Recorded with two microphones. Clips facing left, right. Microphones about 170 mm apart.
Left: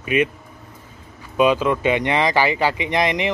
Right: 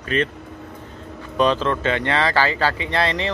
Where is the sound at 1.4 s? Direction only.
10° left (ahead or behind).